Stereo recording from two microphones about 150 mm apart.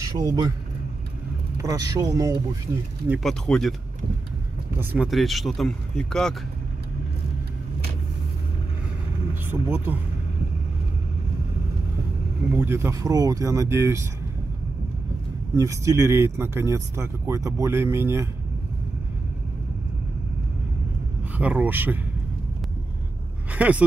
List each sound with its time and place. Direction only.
0.0 s speech: 20° right (ahead or behind)
1.6 s speech: 20° right (ahead or behind)
3.2 s speech: 5° left (ahead or behind)
4.6 s speech: 15° right (ahead or behind)
5.0 s speech: centre (ahead or behind)
9.3 s speech: 15° right (ahead or behind)
12.5 s speech: 15° right (ahead or behind)
15.5 s speech: 20° right (ahead or behind)
21.4 s speech: 10° right (ahead or behind)
23.5 s speech: 10° right (ahead or behind)